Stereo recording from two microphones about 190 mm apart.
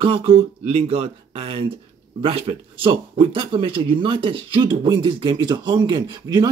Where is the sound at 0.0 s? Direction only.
30° right (ahead or behind).